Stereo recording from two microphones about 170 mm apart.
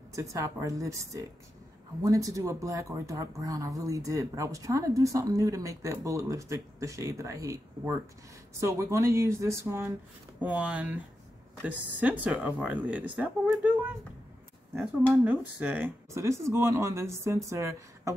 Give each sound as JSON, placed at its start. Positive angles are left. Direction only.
{"t": 0.1, "sound": "speech", "side_deg": -20}
{"t": 15.2, "sound": "speech", "side_deg": -10}